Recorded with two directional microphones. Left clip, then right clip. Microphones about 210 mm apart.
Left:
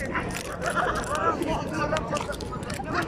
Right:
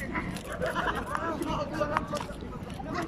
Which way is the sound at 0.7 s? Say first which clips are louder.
Left 7 dB; 35° right (ahead or behind).